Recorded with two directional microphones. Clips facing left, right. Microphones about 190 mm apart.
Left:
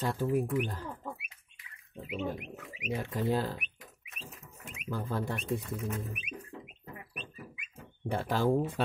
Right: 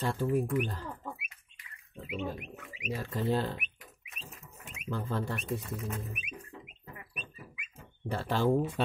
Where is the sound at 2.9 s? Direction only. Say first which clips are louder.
Even; 15° left (ahead or behind).